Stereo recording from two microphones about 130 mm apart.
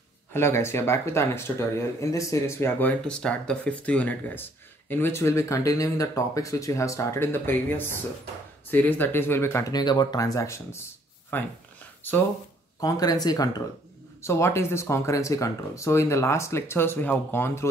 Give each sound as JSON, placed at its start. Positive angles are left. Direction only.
{"t": 0.3, "sound": "speech", "side_deg": 20}
{"t": 3.0, "sound": "speech", "side_deg": 5}
{"t": 12.8, "sound": "speech", "side_deg": 30}